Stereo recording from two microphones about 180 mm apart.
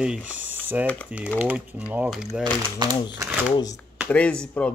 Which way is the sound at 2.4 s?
25° right (ahead or behind).